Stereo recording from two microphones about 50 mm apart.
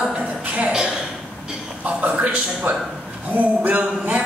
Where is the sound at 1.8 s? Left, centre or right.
Right.